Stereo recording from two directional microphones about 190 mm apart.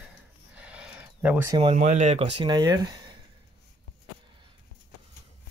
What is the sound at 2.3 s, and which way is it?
Speech, 25° right (ahead or behind).